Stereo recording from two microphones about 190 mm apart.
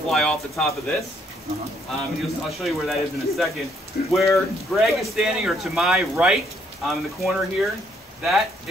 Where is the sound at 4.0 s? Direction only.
55° left (ahead or behind).